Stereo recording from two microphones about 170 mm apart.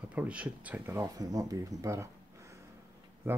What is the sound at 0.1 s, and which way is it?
Speech, 10° right (ahead or behind).